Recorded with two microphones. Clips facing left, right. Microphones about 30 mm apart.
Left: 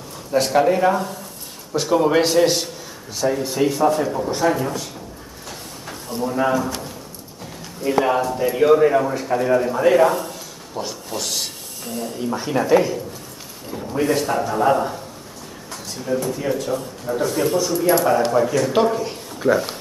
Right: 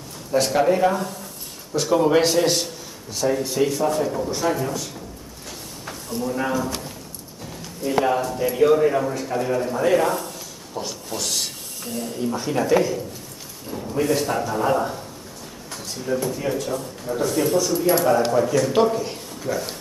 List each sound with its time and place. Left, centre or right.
0.3 s a man's voice: centre
5.9 s a sound: centre
6.3 s a man's voice: centre
8.0 s a man's voice: centre
9.8 s a man's voice: centre
12.3 s a man's voice: centre
16.7 s a man's voice: centre
18.3 s a man's voice: centre